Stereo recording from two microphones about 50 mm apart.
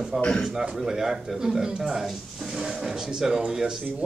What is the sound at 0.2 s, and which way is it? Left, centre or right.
Speech, centre.